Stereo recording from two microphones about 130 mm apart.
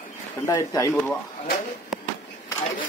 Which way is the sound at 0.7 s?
20° left (ahead or behind).